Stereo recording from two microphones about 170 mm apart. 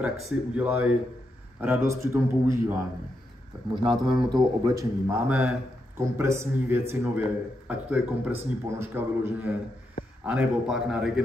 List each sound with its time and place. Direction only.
0.6 s a man's voice: 10° right (ahead or behind)
3.7 s a man's voice: 30° right (ahead or behind); by 11.2 s 5° right (ahead or behind)